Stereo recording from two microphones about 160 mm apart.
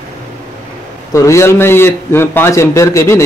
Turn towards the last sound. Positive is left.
turn(degrees=15)  # may be behind; listen again after turning